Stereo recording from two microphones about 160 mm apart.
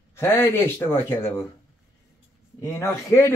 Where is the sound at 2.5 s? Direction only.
15° left (ahead or behind).